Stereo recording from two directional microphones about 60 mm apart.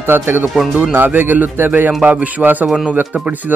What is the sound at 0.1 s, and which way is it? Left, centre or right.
Speech, right.